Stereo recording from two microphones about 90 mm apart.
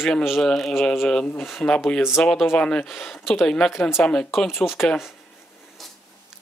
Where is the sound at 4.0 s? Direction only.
10° left (ahead or behind).